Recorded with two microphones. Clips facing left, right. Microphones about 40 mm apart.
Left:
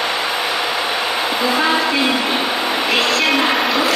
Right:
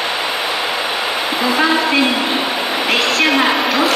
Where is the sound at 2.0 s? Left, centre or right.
Centre.